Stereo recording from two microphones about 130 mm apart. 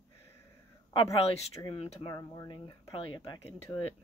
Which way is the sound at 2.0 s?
30° left (ahead or behind).